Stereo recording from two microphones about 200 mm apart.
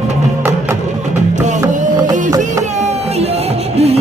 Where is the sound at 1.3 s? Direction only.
40° right (ahead or behind).